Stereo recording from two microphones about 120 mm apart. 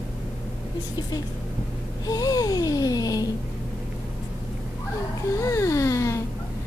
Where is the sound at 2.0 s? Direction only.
30° left (ahead or behind).